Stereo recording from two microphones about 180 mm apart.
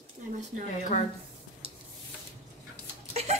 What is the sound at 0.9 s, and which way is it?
Speech, 45° left (ahead or behind).